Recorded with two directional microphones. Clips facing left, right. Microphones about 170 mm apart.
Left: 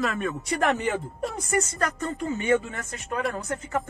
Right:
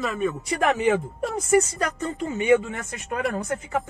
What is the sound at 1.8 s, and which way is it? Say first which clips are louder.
Speech: right 1 dB; 15° right (ahead or behind).